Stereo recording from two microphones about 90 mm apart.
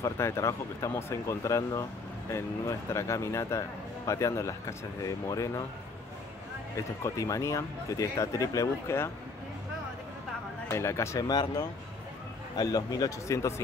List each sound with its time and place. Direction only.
0.0 s speech: 30° left (ahead or behind)
7.0 s speech: 35° left (ahead or behind)
10.7 s speech: 30° left (ahead or behind)
11.2 s speech: 50° left (ahead or behind)